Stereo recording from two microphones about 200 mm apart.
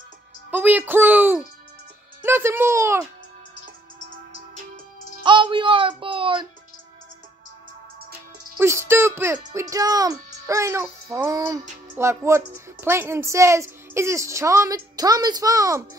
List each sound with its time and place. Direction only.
0.5 s a woman's voice: 10° right (ahead or behind)
5.2 s speech: 25° right (ahead or behind)
8.5 s a woman's voice: 15° right (ahead or behind)